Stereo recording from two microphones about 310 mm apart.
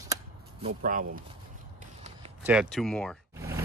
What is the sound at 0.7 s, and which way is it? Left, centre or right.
Speech, right.